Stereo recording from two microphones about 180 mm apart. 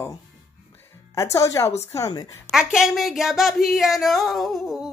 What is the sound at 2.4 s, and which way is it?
Speech, 5° right (ahead or behind).